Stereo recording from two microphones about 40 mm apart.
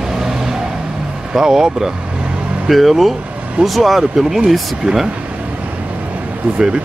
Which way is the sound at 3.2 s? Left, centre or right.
Right.